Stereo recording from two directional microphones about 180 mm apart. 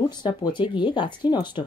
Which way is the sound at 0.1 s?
25° left (ahead or behind).